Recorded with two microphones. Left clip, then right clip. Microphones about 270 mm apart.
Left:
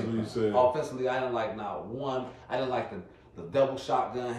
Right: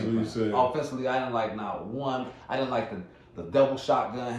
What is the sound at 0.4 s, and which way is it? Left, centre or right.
Speech, centre.